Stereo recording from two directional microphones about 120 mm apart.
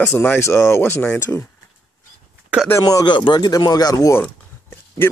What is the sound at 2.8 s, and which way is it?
Speech, 35° left (ahead or behind).